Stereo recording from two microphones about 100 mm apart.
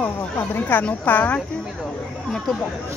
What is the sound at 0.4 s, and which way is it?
Speech, 20° left (ahead or behind).